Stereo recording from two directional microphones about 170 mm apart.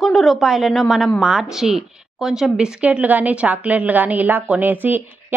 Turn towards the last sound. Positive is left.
turn(degrees=-10)  # may be behind; listen again after turning